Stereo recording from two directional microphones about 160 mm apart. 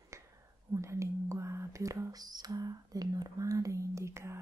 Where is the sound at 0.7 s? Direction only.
20° right (ahead or behind).